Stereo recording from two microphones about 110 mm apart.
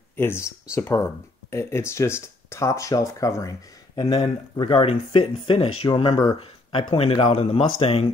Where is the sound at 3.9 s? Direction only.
55° left (ahead or behind).